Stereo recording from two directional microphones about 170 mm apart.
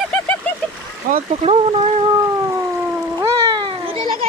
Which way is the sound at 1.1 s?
40° right (ahead or behind).